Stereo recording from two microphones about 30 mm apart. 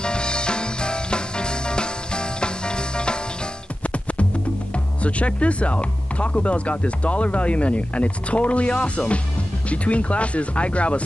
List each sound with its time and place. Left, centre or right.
0.0 s music: left
3.8 s music: left
4.7 s speech: left